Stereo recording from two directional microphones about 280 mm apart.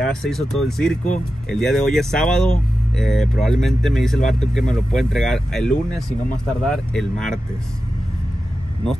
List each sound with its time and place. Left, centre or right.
0.0 s speech: centre